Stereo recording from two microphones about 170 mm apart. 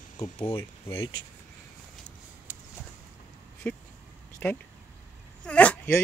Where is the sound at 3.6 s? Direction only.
10° left (ahead or behind).